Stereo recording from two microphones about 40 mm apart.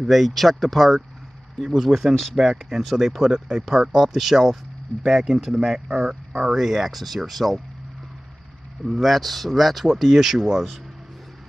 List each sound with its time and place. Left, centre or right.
0.0 s speech: centre
2.4 s speech: right
2.8 s speech: centre
6.5 s speech: centre
8.8 s speech: centre